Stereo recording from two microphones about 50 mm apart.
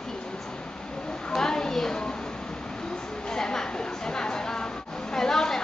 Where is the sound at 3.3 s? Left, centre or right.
Centre.